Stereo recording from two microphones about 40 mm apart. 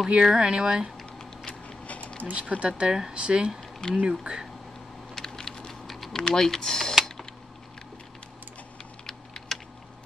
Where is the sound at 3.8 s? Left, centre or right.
Left.